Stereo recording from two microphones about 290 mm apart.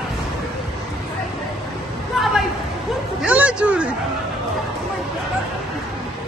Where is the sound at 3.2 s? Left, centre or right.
Centre.